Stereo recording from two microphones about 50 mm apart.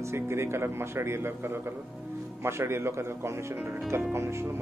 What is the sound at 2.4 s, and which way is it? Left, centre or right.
Speech, right.